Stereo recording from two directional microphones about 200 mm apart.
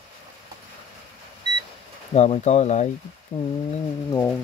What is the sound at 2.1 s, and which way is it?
Speech, 35° left (ahead or behind).